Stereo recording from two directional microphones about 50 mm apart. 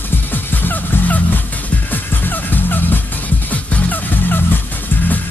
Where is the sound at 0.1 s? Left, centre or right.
Left.